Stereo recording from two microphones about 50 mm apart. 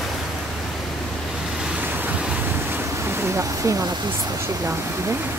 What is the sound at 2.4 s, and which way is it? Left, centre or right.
Waves, right.